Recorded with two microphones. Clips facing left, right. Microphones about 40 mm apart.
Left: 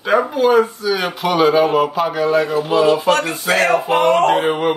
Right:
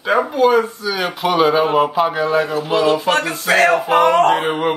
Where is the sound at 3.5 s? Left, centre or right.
Right.